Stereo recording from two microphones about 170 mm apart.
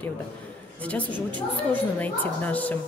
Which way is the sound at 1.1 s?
30° right (ahead or behind).